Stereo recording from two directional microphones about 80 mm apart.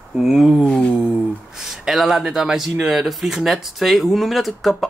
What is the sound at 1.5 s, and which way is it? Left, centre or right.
Speech, centre.